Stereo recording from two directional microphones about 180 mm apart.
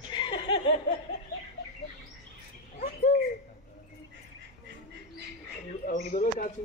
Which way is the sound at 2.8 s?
50° left (ahead or behind).